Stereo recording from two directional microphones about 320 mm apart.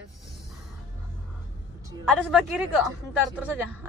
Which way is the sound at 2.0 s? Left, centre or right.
Centre.